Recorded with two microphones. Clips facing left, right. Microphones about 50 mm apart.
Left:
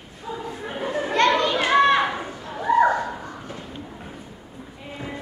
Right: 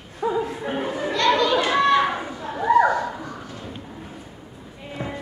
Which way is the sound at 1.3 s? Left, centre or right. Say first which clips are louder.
Right 2 dB; left.